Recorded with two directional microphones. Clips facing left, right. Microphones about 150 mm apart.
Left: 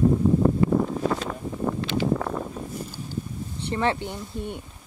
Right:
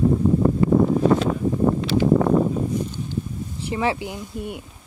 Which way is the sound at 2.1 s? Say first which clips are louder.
Right 11 dB; 25° right (ahead or behind).